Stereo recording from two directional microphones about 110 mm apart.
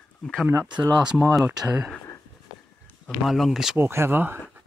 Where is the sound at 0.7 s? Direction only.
40° right (ahead or behind).